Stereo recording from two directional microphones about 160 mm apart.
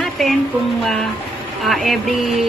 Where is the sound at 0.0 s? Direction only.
Centre (ahead or behind).